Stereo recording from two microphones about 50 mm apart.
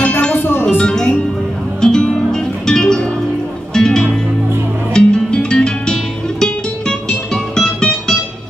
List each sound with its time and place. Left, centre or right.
0.0 s music: left
0.5 s music: left
0.7 s music: centre
7.5 s music: centre